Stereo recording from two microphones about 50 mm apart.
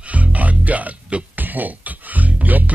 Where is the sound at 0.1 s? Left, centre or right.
Right.